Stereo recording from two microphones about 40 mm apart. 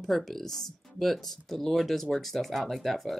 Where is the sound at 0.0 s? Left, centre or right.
Centre.